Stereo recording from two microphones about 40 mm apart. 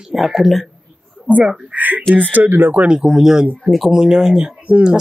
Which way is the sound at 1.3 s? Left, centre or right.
Right.